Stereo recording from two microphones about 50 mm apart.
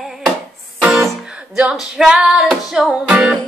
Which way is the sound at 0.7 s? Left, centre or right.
Centre.